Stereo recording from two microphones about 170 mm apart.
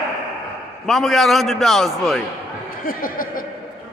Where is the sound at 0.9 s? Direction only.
Centre (ahead or behind).